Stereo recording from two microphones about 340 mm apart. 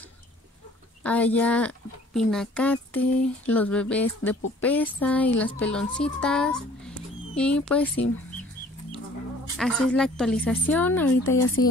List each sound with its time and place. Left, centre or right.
1.0 s speech: centre
9.6 s speech: centre
11.2 s speech: left